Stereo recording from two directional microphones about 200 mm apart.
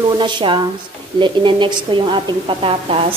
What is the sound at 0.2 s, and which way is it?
A woman's voice, 25° right (ahead or behind).